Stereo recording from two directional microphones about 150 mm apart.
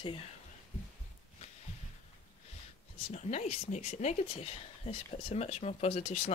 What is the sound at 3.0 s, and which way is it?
Speech, 50° left (ahead or behind).